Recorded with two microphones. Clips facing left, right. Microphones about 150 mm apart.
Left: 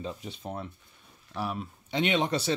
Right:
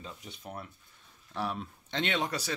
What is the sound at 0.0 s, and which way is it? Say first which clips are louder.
Speech: left 8 dB; 30° left (ahead or behind).